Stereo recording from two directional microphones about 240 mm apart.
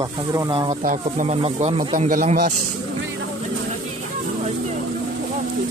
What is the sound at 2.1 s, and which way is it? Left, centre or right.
Speech, right.